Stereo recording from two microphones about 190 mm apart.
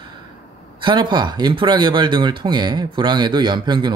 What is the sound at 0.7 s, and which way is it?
Speech, 25° right (ahead or behind).